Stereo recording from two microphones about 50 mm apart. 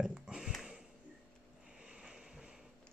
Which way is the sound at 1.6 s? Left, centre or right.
Right.